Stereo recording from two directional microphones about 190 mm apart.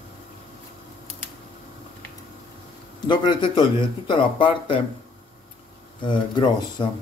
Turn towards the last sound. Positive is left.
turn(degrees=20)  # may be behind; listen again after turning